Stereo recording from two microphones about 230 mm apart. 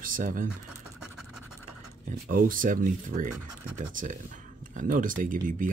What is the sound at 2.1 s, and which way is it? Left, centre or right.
Speech, right.